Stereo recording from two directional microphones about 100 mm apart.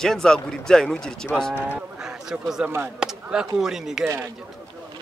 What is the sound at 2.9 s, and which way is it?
Speech, 5° right (ahead or behind).